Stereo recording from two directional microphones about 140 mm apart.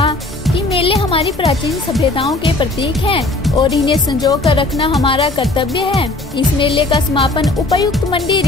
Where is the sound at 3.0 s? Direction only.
45° left (ahead or behind).